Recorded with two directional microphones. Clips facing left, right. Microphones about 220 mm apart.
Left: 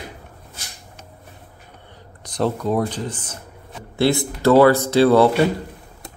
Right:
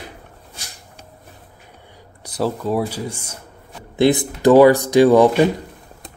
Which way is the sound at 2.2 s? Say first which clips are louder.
Even; 5° right (ahead or behind).